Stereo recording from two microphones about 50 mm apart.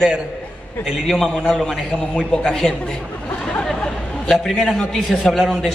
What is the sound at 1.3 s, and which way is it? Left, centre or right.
A man's voice, centre.